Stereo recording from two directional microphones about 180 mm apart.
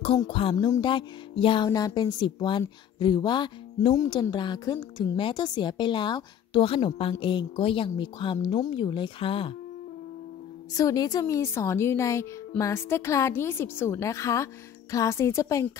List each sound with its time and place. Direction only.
0.0 s a woman's voice: 30° left (ahead or behind)
10.7 s a woman's voice: 20° left (ahead or behind)